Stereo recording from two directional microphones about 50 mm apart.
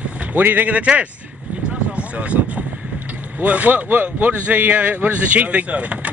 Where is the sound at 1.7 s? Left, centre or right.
Right.